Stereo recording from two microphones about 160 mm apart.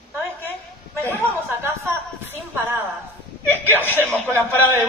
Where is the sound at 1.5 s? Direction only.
15° right (ahead or behind).